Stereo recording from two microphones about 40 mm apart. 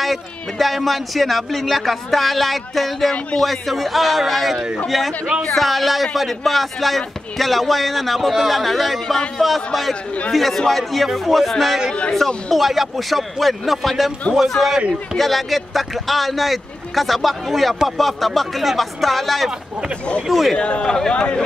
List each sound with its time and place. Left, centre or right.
0.0 s speech: centre
14.6 s speech: centre
15.1 s speech: centre
20.5 s speech: left
20.8 s speech: centre
21.1 s speech: left